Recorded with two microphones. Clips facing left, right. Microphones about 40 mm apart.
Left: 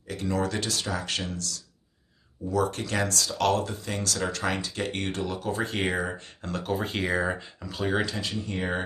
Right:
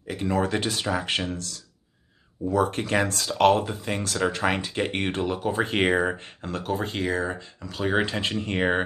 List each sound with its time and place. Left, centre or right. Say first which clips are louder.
0.1 s speech: right 3 dB; right
5.7 s speech: right 6 dB; right
6.4 s speech: right 1 dB; centre
7.6 s speech: right 2 dB; centre
8.0 s speech: right 4 dB; right